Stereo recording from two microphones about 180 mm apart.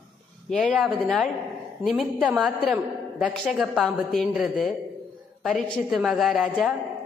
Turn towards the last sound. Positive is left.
turn(degrees=0)  # may be behind; listen again after turning